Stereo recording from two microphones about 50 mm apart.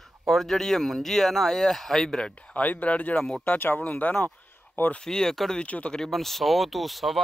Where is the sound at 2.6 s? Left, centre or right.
Left.